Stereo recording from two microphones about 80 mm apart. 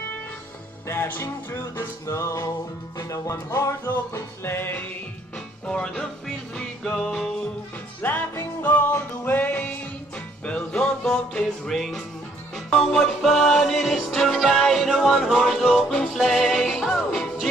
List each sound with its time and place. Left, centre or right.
0.8 s music: left
5.7 s music: centre
8.0 s music: left; by 17.5 s centre